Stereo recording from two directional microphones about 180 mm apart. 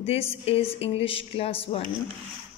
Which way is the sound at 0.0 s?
35° left (ahead or behind).